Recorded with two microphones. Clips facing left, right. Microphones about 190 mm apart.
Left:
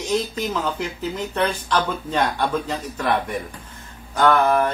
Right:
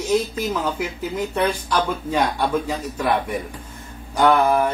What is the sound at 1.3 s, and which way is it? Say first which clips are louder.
Speech: even; 10° right (ahead or behind).